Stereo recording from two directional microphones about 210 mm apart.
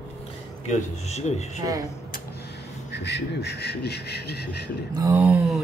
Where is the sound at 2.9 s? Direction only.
50° left (ahead or behind).